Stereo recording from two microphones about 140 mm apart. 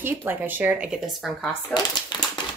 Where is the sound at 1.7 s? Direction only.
30° left (ahead or behind).